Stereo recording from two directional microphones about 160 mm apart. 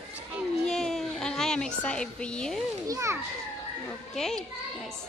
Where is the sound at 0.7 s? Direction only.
Centre (ahead or behind).